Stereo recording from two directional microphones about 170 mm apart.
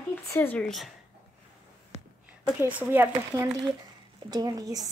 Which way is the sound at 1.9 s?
35° left (ahead or behind).